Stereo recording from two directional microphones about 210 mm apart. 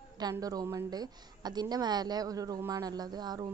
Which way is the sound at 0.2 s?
15° right (ahead or behind).